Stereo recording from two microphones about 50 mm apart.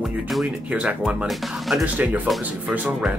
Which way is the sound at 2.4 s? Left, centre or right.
Right.